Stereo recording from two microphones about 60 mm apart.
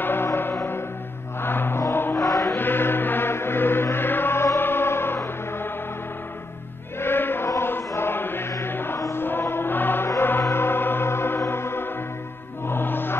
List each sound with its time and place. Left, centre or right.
0.0 s music: left
1.4 s chant: left
2.1 s chant: left
2.5 s music: left
7.0 s choir: left
7.4 s chant: left
7.9 s chant: left
8.5 s music: left
8.7 s music: left